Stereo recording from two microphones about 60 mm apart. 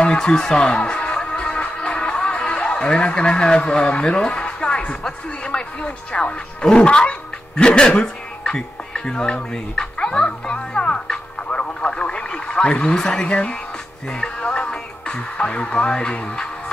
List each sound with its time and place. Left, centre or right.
0.0 s speech: centre